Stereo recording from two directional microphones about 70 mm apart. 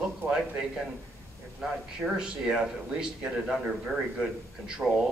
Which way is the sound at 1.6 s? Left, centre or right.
Centre.